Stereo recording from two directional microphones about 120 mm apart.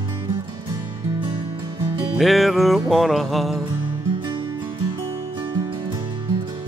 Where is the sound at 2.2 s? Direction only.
Centre (ahead or behind).